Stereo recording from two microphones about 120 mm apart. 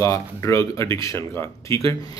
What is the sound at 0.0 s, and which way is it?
Speech, 25° left (ahead or behind).